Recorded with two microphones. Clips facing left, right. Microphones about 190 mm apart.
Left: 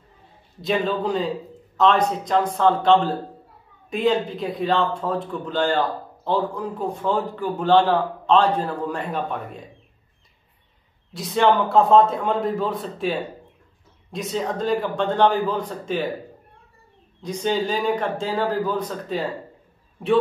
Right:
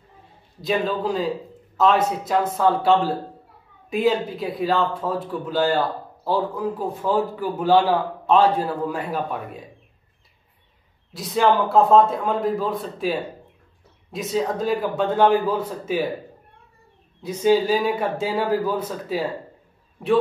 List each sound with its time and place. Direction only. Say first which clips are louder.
0.6 s a man's voice: even; centre (ahead or behind)
11.1 s a man's voice: even; centre (ahead or behind)
17.2 s a man's voice: right 5 dB; 5° right (ahead or behind)